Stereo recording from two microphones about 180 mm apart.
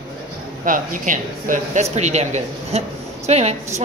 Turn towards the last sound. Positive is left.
turn(degrees=-35)  # may be behind; listen again after turning